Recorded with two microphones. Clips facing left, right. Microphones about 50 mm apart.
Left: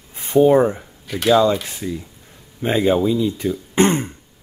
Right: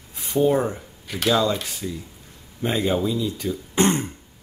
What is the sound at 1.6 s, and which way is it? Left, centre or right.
Speech, left.